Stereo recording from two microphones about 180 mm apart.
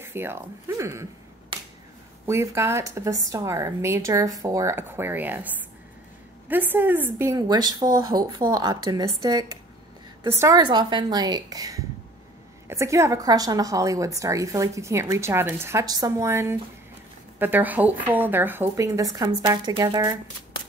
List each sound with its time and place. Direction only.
0.0 s speech: 10° right (ahead or behind)
2.2 s a woman's voice: 15° right (ahead or behind)
6.5 s a woman's voice: 10° right (ahead or behind)